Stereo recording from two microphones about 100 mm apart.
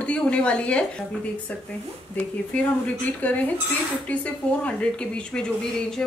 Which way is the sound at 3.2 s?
15° left (ahead or behind).